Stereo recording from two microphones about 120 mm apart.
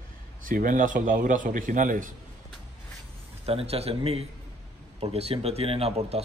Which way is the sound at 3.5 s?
55° right (ahead or behind).